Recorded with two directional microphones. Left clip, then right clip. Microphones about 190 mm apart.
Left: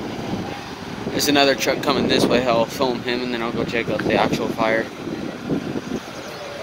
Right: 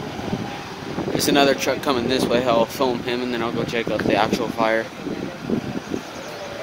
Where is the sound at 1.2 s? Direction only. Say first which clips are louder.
Left 1 dB; 10° right (ahead or behind).